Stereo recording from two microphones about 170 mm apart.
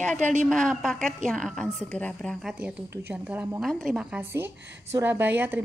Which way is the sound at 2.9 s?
10° right (ahead or behind).